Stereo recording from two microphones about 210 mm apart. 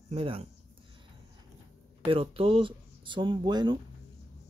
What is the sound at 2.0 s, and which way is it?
Speech, 25° right (ahead or behind).